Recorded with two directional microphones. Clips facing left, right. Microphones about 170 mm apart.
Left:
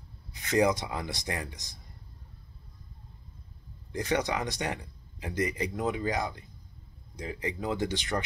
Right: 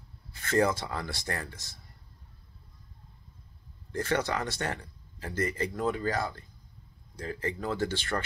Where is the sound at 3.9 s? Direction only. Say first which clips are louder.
Even; 15° left (ahead or behind).